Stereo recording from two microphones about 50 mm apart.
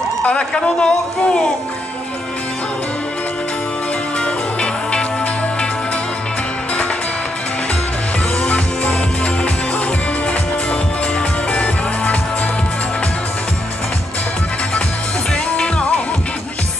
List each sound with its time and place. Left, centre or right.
0.2 s a man's voice: left
4.2 s music: left
8.4 s music: left
10.7 s music: left